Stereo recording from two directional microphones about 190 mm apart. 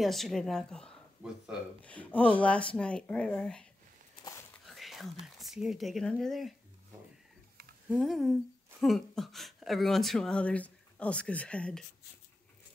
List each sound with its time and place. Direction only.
0.0 s speech: centre (ahead or behind)
4.2 s a sound: 15° left (ahead or behind)
4.6 s whispering: centre (ahead or behind)
5.2 s speech: centre (ahead or behind)
7.9 s speech: centre (ahead or behind)